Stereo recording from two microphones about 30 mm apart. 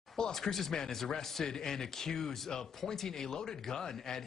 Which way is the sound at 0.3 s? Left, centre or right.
Centre.